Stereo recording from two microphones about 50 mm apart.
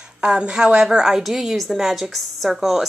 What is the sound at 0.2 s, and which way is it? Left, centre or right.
A woman's voice, centre.